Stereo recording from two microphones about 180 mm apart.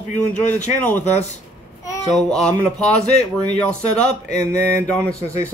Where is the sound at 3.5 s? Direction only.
5° left (ahead or behind).